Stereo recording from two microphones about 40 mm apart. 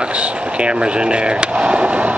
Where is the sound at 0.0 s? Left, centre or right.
Right.